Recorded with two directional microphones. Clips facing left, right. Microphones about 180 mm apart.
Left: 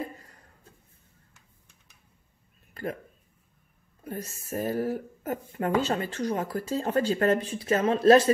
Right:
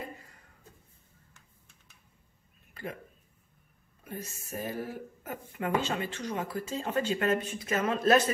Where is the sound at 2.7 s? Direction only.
45° left (ahead or behind).